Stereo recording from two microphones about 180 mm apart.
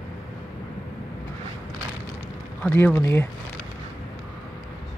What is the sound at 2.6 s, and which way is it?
Speech, 10° left (ahead or behind).